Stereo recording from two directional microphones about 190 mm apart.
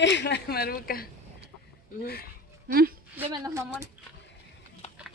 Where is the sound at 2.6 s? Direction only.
50° right (ahead or behind).